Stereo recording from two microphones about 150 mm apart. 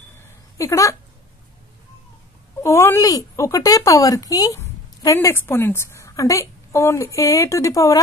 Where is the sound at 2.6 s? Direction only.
15° left (ahead or behind).